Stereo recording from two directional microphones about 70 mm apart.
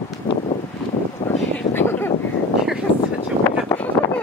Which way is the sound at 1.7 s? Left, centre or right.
Left.